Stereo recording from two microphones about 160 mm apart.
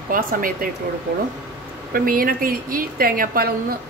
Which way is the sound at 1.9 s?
65° right (ahead or behind).